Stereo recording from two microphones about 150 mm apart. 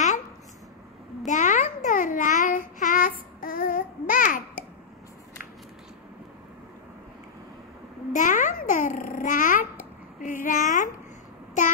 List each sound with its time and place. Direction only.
1.2 s babbling: 55° left (ahead or behind)
8.1 s babbling: 60° left (ahead or behind)
10.2 s a sound: 60° left (ahead or behind)
11.6 s child singing: 55° left (ahead or behind)